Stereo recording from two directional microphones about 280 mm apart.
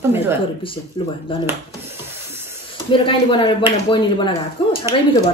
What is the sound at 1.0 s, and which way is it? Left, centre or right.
Speech, centre.